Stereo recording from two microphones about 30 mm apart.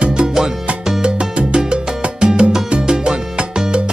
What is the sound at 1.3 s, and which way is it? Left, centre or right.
Music, right.